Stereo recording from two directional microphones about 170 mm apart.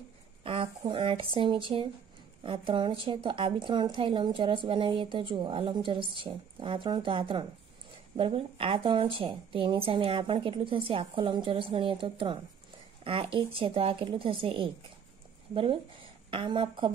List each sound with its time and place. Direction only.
0.4 s a woman's voice: 30° right (ahead or behind)